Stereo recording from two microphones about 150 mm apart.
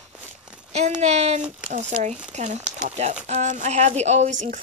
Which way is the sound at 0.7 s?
50° right (ahead or behind).